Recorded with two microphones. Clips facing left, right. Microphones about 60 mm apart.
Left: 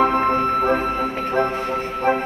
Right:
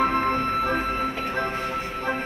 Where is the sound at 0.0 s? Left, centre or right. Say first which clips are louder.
Left 5 dB; left.